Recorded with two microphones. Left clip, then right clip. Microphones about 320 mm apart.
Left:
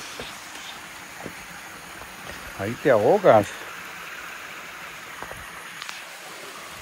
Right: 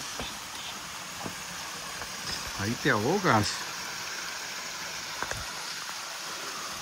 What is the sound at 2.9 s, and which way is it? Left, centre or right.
Speech, centre.